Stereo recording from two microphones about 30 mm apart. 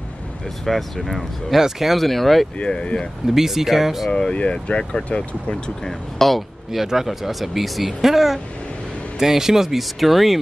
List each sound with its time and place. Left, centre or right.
0.7 s speech: centre
1.5 s speech: centre
2.0 s speech: centre
2.6 s speech: left
3.3 s speech: centre
4.1 s speech: left
4.4 s speech: left
5.9 s speech: centre
6.7 s speech: centre
9.8 s speech: centre